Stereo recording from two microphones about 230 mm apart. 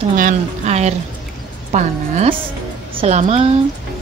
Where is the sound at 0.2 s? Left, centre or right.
Right.